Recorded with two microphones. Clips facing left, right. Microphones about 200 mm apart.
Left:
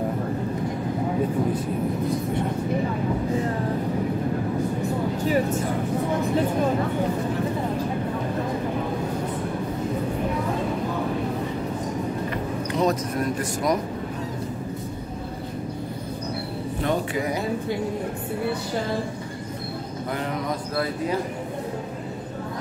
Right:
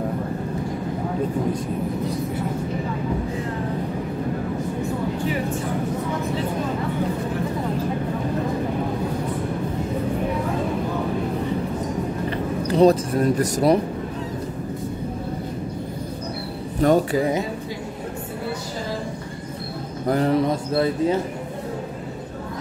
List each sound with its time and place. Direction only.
5.2 s speech: 40° left (ahead or behind)
12.7 s speech: 30° right (ahead or behind)
16.8 s speech: 40° right (ahead or behind)
20.1 s speech: 35° right (ahead or behind)